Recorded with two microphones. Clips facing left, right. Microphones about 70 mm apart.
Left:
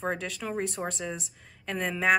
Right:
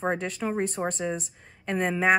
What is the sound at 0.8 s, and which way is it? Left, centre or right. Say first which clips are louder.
Speech: right 4 dB; centre.